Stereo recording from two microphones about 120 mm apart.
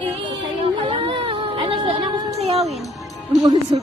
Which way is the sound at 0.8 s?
45° right (ahead or behind).